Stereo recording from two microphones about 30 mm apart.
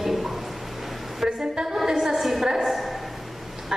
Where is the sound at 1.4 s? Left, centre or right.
Right.